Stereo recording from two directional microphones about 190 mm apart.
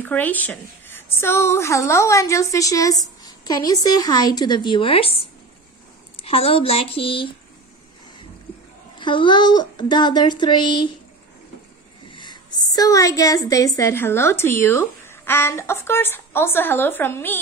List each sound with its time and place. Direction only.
0.0 s a woman's voice: 10° left (ahead or behind); by 7.2 s 30° left (ahead or behind)
8.9 s speech: 25° left (ahead or behind)
12.1 s a woman's voice: 25° left (ahead or behind)